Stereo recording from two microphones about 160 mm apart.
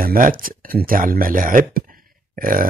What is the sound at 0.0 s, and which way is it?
Speech, 65° right (ahead or behind).